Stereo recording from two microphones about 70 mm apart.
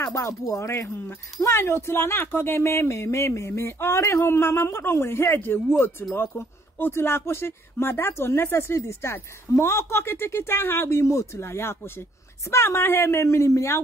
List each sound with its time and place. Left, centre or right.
0.0 s speech: left